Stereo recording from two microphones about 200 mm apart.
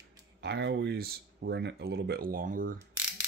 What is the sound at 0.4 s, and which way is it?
Speech, 60° right (ahead or behind).